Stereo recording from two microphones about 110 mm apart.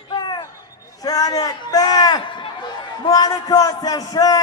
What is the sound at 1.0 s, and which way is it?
A man's voice, 35° left (ahead or behind).